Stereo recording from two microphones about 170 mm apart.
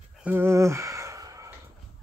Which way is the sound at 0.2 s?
10° right (ahead or behind).